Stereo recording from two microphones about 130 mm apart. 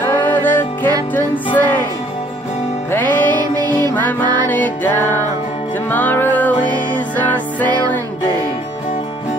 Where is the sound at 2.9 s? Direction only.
15° left (ahead or behind).